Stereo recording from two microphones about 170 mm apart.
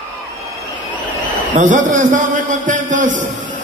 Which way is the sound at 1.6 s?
45° right (ahead or behind).